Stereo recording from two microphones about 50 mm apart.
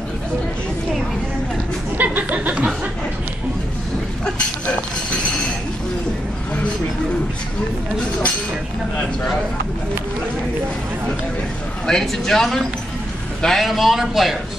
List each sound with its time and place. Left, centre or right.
2.0 s speech: right
11.8 s a man's voice: centre